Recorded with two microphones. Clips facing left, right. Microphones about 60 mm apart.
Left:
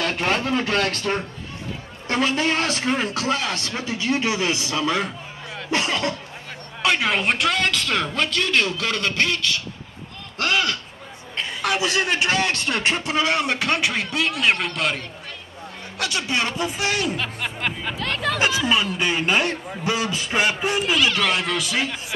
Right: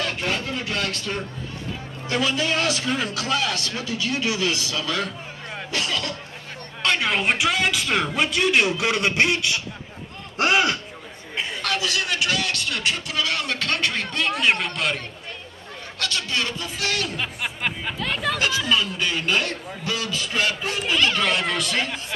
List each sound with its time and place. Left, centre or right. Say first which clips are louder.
0.2 s a man's voice: left 5 dB; left
6.8 s a man's voice: left 2 dB; centre; by 10.8 s right
11.6 s speech: left 5 dB; left; by 15.0 s centre
16.0 s speech: left 3 dB; centre
17.2 s speech: left 1 dB; centre
18.6 s speech: left 2 dB; left
21.1 s speech: left 1 dB; centre